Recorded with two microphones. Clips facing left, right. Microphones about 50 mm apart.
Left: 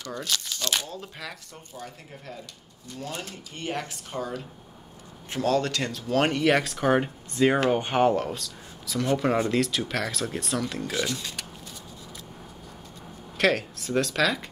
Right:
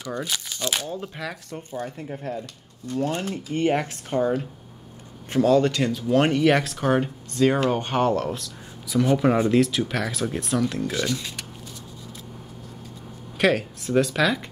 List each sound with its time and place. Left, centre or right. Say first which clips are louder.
0.0 s speech: right 2 dB; centre
0.8 s speech: right 7 dB; right
1.5 s speech: right 9 dB; right
5.5 s speech: right 4 dB; centre
8.3 s speech: right 3 dB; centre
13.4 s speech: right 2 dB; centre